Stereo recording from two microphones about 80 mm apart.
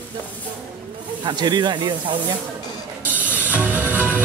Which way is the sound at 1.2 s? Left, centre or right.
Right.